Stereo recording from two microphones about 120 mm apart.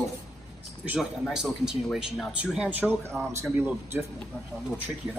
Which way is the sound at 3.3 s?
20° right (ahead or behind).